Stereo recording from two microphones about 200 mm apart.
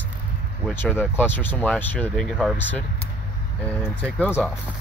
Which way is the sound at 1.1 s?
10° left (ahead or behind).